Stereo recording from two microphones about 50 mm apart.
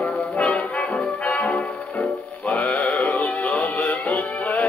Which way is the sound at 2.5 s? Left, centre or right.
Left.